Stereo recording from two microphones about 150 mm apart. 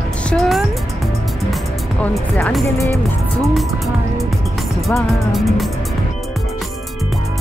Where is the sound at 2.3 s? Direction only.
Centre (ahead or behind).